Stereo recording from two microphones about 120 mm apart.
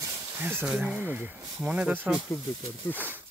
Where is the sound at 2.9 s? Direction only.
15° right (ahead or behind).